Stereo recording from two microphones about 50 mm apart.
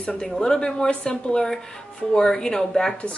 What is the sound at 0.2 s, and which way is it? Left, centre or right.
Speech, centre.